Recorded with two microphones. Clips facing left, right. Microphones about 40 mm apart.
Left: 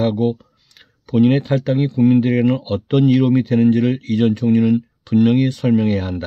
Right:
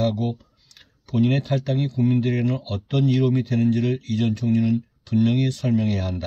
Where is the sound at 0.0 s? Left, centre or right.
Left.